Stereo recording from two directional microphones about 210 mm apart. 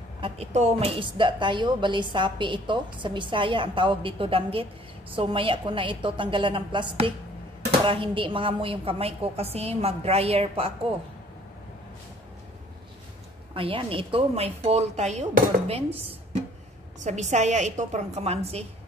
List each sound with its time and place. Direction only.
0.2 s a woman's voice: 30° right (ahead or behind)
13.6 s a woman's voice: 25° right (ahead or behind)